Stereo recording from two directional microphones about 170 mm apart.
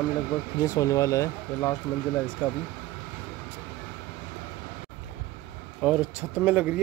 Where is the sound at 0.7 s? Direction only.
20° left (ahead or behind).